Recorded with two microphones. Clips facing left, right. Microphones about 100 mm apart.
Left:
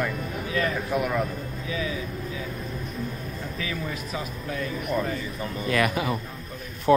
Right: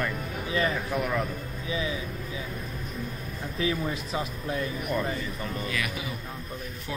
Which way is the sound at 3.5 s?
25° right (ahead or behind).